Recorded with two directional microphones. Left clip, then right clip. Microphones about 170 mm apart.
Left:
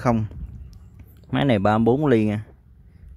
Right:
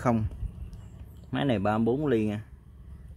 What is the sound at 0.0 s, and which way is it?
Speech, 25° left (ahead or behind).